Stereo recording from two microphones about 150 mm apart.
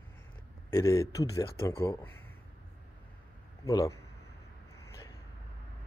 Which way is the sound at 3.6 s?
25° left (ahead or behind).